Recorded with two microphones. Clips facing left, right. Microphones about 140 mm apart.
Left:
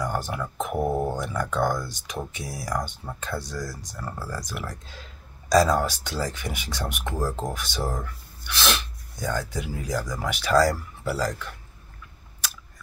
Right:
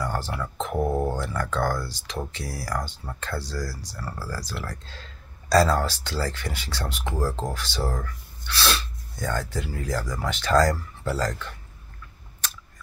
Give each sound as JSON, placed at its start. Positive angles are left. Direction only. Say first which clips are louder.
{"t": 0.0, "sound": "speech", "louder": "left 1 dB", "side_deg": 15}